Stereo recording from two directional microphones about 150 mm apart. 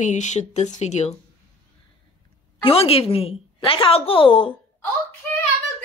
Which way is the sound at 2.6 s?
40° left (ahead or behind).